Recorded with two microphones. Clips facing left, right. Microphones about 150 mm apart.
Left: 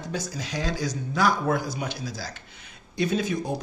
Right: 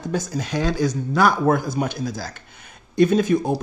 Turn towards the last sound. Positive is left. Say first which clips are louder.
# right 9 dB
turn(degrees=-50)  # may be behind; listen again after turning